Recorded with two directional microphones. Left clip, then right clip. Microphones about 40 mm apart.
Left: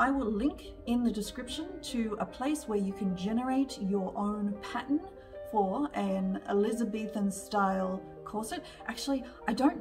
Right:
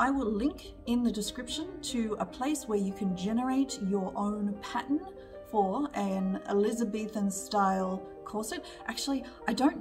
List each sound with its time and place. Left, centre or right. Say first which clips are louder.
0.4 s a woman's voice: even; right